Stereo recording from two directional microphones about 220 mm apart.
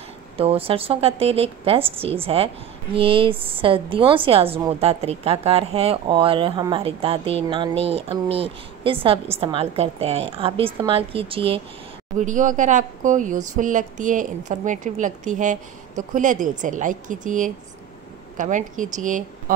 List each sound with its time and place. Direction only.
0.4 s a woman's voice: 25° right (ahead or behind)
12.2 s speech: 35° right (ahead or behind)